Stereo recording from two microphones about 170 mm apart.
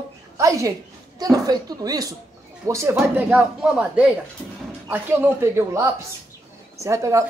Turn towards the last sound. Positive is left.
turn(degrees=-15)  # may be behind; listen again after turning